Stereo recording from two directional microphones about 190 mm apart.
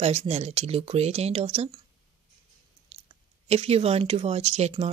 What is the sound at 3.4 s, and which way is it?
Speech, 35° right (ahead or behind).